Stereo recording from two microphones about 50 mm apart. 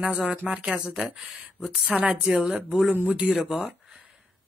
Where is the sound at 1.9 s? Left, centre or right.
Right.